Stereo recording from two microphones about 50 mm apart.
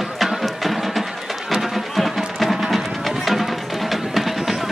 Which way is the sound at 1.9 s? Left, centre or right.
Centre.